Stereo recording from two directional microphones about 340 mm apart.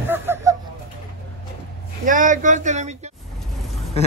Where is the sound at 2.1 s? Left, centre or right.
Right.